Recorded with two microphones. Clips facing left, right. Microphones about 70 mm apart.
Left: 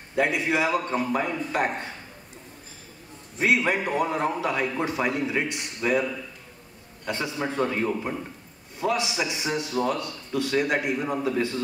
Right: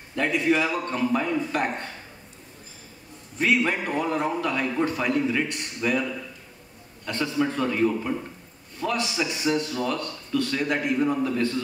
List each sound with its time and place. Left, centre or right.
0.1 s a man's voice: centre
3.3 s a man's voice: centre
7.1 s a man's voice: centre
7.3 s a man's voice: left
8.7 s a man's voice: centre